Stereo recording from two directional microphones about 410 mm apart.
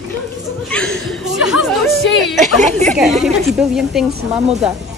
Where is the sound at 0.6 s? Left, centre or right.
Centre.